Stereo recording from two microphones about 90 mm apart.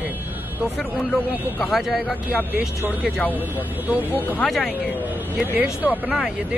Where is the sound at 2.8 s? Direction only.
20° right (ahead or behind).